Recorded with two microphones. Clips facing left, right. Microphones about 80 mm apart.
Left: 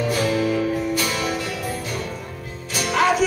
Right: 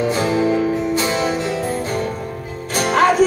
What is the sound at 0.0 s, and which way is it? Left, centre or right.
Music, right.